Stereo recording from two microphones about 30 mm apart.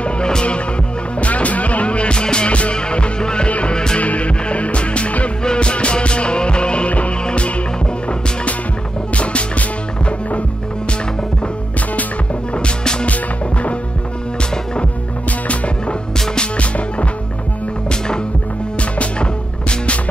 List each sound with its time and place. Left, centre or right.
0.3 s music: left
1.2 s music: left
3.4 s music: left
3.7 s music: left
4.0 s music: left
5.4 s music: left
9.1 s music: left
13.0 s music: left
15.2 s music: left
17.8 s music: left